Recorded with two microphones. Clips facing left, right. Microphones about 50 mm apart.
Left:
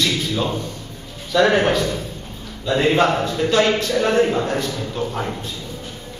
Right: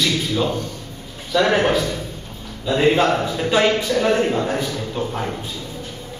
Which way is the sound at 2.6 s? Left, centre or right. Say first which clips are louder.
Even; centre.